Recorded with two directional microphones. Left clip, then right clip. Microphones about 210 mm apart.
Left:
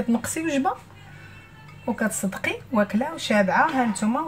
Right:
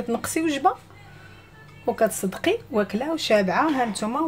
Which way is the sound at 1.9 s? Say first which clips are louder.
Right 5 dB; 40° right (ahead or behind).